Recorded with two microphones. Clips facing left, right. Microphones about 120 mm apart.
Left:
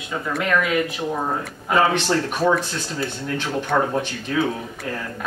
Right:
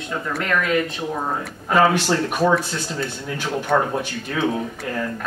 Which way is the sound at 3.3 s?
10° right (ahead or behind).